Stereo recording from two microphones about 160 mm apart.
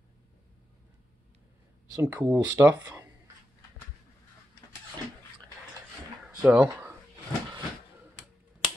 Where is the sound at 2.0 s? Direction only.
10° right (ahead or behind).